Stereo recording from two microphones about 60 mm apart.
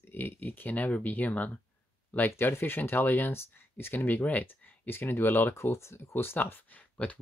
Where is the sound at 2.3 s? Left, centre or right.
Left.